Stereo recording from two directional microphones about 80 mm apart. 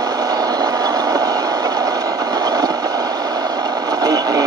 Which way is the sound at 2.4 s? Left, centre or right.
Right.